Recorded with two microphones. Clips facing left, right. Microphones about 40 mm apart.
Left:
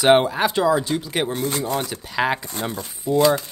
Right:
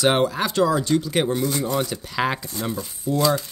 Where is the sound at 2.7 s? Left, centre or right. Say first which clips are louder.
Right 1 dB; left.